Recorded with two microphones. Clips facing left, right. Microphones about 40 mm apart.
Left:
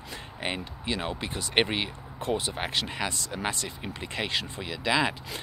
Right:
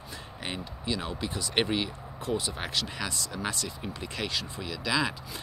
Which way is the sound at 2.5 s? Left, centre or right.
Left.